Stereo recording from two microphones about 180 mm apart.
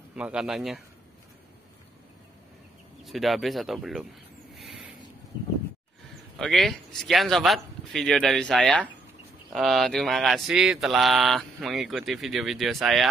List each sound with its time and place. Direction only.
0.1 s speech: 5° right (ahead or behind)
3.0 s speech: centre (ahead or behind)
4.6 s a sound: centre (ahead or behind)
6.3 s speech: centre (ahead or behind)